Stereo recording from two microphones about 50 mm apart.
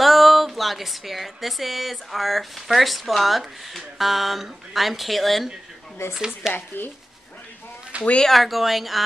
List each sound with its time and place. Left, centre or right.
0.0 s a woman's voice: centre
6.1 s speech: centre
6.7 s speech: left
7.9 s a sound: right
8.3 s a woman's voice: centre